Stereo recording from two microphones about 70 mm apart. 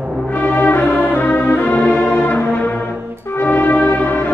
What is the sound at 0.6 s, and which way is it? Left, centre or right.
Music, left.